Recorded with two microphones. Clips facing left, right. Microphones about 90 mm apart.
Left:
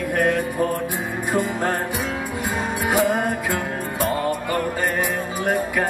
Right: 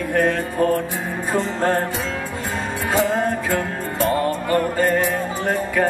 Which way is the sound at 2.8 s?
15° left (ahead or behind).